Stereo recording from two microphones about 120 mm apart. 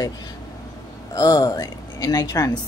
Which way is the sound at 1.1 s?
35° left (ahead or behind).